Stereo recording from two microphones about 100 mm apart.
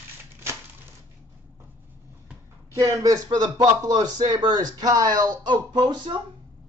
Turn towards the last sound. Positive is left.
turn(degrees=-50)  # may be behind; listen again after turning